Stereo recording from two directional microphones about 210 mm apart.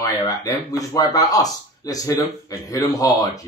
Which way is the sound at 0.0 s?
15° left (ahead or behind).